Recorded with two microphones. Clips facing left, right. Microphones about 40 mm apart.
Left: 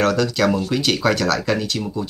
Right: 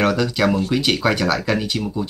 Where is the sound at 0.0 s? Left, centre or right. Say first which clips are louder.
Even; centre.